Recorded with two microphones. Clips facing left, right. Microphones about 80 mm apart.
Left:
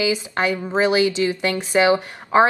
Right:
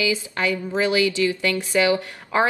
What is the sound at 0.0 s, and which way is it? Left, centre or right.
Speech, left.